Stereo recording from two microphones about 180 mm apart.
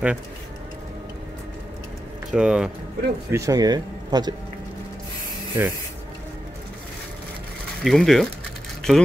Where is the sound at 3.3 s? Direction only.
20° right (ahead or behind).